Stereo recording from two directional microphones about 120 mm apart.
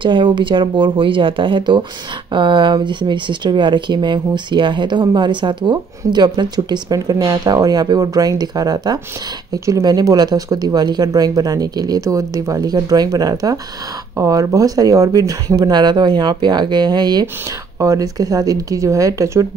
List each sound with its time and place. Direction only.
0.0 s a woman's voice: 45° right (ahead or behind); by 19.4 s 25° right (ahead or behind)